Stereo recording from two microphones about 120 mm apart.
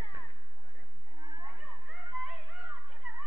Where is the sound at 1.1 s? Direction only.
35° right (ahead or behind).